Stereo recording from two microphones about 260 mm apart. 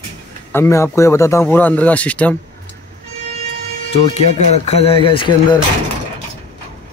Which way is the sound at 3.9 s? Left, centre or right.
Left.